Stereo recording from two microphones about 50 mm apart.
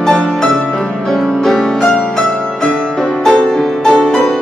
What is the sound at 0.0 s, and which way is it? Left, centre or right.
Music, centre.